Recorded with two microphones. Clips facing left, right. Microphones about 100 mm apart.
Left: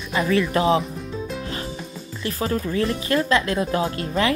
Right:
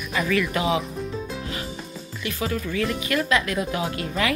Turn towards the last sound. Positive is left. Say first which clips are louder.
# left 3 dB
turn(degrees=35)  # may be behind; listen again after turning